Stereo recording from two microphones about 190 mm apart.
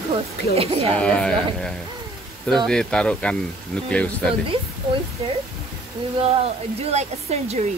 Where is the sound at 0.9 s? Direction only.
5° left (ahead or behind).